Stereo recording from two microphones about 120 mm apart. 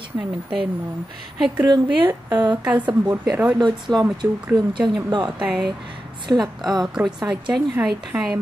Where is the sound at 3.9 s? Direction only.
5° left (ahead or behind).